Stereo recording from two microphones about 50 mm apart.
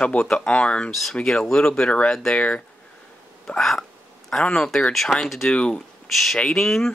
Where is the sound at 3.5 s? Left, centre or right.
Centre.